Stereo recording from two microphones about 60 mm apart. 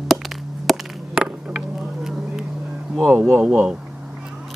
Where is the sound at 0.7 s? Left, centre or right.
Centre.